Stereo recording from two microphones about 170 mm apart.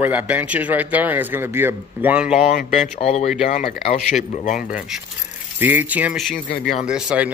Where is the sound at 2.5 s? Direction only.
50° left (ahead or behind).